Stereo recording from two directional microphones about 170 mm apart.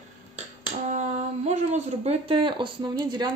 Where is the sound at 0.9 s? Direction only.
40° right (ahead or behind).